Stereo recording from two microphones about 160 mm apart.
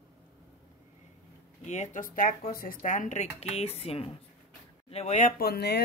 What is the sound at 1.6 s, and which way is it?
Speech, 50° left (ahead or behind).